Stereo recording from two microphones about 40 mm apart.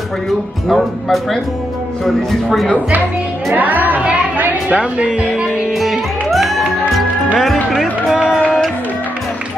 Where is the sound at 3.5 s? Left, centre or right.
Right.